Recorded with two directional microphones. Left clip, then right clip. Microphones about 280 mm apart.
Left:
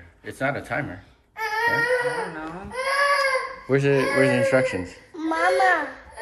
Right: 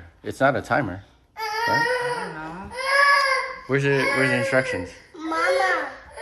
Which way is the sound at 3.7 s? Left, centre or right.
Centre.